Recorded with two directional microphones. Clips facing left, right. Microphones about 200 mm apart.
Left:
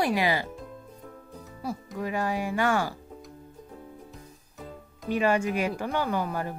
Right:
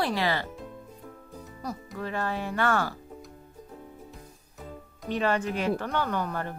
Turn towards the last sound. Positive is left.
turn(degrees=10)  # may be behind; listen again after turning